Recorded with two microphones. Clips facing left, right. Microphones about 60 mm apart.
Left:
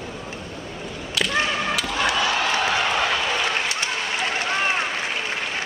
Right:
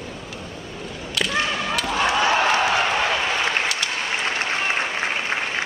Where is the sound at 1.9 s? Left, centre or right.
Right.